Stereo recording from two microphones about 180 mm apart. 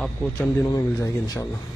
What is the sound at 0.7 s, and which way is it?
Speech, 20° left (ahead or behind).